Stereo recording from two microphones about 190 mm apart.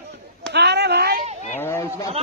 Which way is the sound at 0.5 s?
65° right (ahead or behind).